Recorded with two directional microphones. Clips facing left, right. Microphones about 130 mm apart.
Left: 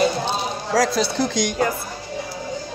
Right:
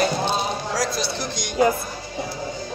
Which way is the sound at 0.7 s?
45° left (ahead or behind).